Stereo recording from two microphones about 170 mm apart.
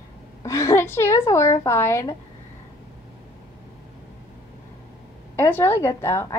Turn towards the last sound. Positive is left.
turn(degrees=15)  # may be behind; listen again after turning